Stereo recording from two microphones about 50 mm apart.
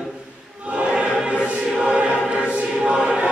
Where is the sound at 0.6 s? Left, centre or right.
Right.